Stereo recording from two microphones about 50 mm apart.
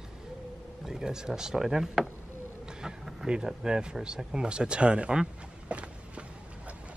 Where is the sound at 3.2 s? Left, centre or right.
Centre.